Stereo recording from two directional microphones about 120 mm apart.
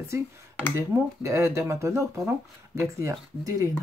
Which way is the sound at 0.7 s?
20° right (ahead or behind).